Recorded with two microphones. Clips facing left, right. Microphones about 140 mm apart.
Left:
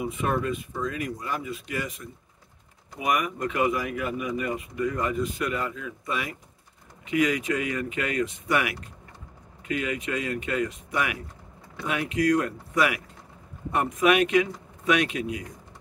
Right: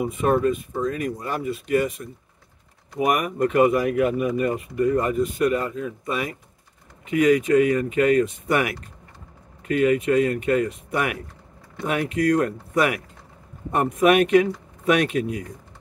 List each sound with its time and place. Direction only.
0.1 s speech: 30° right (ahead or behind)
0.8 s speech: 45° right (ahead or behind)
1.2 s speech: 55° right (ahead or behind)
11.8 s speech: 45° right (ahead or behind)